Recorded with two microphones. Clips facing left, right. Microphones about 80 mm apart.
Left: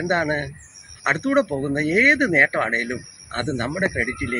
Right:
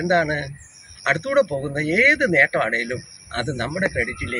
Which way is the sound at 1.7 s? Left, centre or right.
Centre.